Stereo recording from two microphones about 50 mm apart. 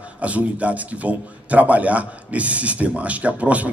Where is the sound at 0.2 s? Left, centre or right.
Right.